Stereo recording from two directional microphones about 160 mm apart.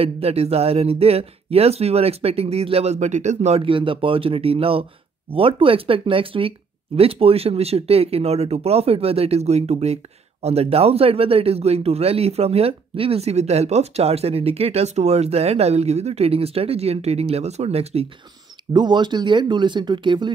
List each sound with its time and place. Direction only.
0.0 s speech: 40° right (ahead or behind)
18.7 s speech: 30° right (ahead or behind)